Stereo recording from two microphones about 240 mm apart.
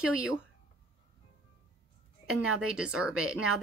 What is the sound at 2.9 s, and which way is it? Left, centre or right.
Speech, centre.